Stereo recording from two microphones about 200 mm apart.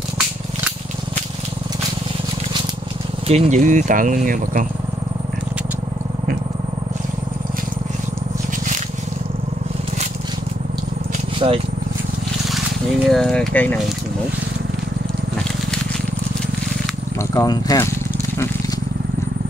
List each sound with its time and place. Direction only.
3.3 s speech: 35° right (ahead or behind)
11.3 s vehicle: 25° right (ahead or behind)
12.4 s speech: centre (ahead or behind)
17.3 s speech: 15° left (ahead or behind)